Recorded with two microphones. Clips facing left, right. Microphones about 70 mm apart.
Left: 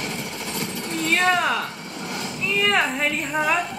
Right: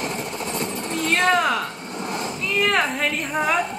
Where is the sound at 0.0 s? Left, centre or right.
Right.